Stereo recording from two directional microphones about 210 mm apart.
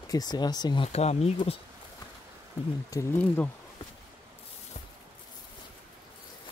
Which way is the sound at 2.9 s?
10° left (ahead or behind).